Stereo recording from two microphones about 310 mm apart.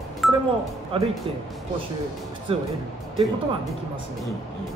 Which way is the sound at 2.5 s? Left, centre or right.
Centre.